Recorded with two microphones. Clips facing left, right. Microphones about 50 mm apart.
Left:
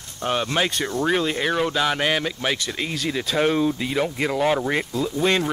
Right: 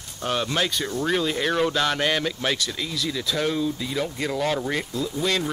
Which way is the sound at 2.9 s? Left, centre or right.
Left.